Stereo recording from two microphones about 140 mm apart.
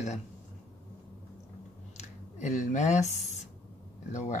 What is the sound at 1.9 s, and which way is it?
Speech, 55° left (ahead or behind).